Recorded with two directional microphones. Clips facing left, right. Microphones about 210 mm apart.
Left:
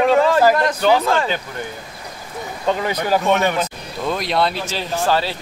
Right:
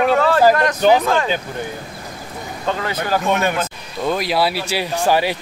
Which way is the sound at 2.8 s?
15° left (ahead or behind).